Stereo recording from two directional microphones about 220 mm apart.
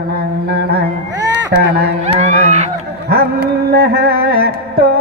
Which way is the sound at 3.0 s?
45° right (ahead or behind).